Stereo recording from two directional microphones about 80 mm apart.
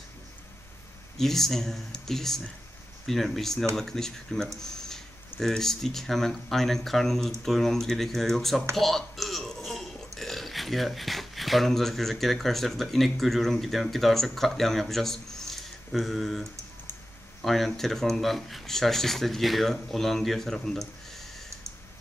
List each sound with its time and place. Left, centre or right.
1.1 s speech: centre
8.7 s a sound: centre
10.1 s speech: centre